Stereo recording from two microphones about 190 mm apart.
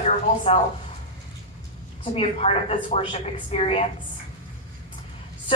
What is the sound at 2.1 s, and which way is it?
A woman's voice, 35° left (ahead or behind).